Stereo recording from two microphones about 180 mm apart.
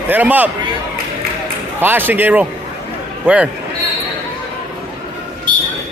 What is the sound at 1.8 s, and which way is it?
Speech, 10° right (ahead or behind).